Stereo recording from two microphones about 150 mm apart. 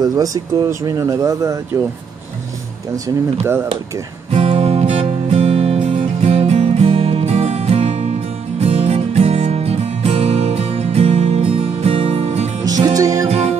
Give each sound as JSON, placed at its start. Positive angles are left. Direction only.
{"t": 0.0, "sound": "speech", "side_deg": -25}
{"t": 3.4, "sound": "speech", "side_deg": -15}
{"t": 4.3, "sound": "music", "side_deg": -45}
{"t": 12.6, "sound": "music", "side_deg": -25}